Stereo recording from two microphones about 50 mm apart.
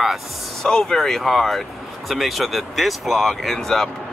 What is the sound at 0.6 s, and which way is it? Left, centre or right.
Speech, centre.